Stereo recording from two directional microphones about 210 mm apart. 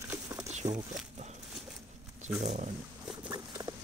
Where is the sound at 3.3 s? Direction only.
20° right (ahead or behind).